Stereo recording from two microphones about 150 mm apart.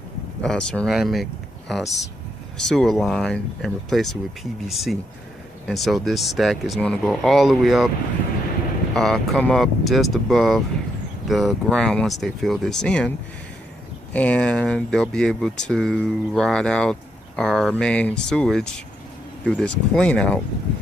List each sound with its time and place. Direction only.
0.4 s speech: 5° left (ahead or behind)
8.9 s speech: 5° left (ahead or behind)
14.1 s speech: 10° left (ahead or behind)